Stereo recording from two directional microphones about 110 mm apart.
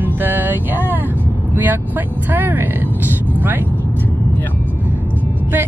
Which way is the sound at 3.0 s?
15° right (ahead or behind).